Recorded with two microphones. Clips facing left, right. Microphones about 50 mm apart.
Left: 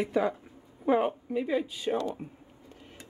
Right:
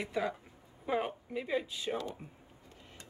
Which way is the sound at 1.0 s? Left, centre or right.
Centre.